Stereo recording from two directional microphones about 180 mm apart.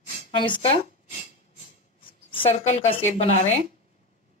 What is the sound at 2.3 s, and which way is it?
A woman's voice, 35° left (ahead or behind).